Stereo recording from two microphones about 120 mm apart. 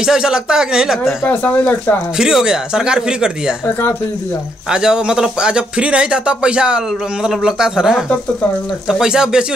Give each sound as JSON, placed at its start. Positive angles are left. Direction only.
{"t": 0.0, "sound": "speech", "side_deg": -5}
{"t": 1.2, "sound": "speech", "side_deg": 15}
{"t": 2.1, "sound": "speech", "side_deg": -5}
{"t": 4.6, "sound": "speech", "side_deg": -5}